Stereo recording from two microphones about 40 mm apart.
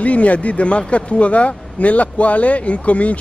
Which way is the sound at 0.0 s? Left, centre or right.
Left.